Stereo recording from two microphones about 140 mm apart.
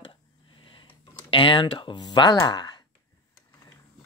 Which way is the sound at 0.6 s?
35° left (ahead or behind).